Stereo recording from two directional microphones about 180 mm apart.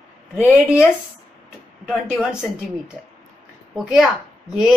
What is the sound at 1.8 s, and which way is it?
Speech, centre (ahead or behind).